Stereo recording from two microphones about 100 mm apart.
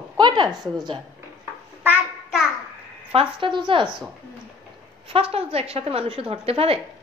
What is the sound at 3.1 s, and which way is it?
Speech, 60° right (ahead or behind).